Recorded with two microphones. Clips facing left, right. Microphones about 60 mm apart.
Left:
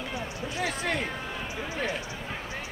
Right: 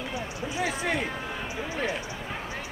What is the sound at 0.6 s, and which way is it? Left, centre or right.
Speech, centre.